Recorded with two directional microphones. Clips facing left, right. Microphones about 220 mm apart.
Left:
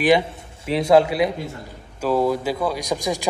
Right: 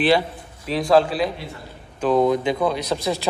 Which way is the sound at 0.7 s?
25° left (ahead or behind).